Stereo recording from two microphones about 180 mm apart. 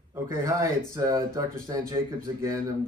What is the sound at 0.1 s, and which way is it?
A man's voice, 15° right (ahead or behind).